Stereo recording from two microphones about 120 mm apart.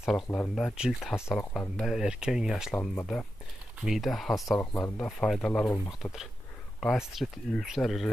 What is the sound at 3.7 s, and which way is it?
Speech, centre (ahead or behind).